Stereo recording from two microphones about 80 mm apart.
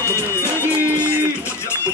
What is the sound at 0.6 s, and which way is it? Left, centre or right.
Music, right.